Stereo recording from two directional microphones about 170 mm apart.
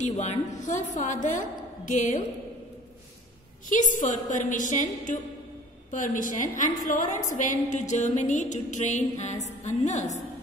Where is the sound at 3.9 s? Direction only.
45° left (ahead or behind).